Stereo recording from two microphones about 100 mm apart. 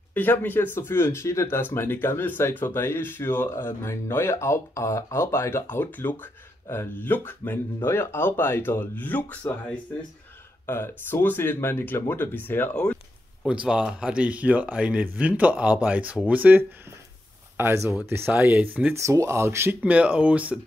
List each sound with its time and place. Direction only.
0.1 s speech: 20° left (ahead or behind)
10.7 s speech: 25° left (ahead or behind)
13.5 s speech: 10° right (ahead or behind)
18.9 s speech: 30° right (ahead or behind)
19.8 s speech: 15° right (ahead or behind)